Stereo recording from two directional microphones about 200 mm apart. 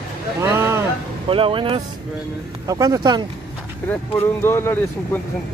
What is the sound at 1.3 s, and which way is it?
Speech, 25° right (ahead or behind).